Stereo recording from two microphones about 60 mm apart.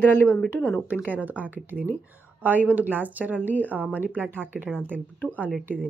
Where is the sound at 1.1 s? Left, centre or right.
Right.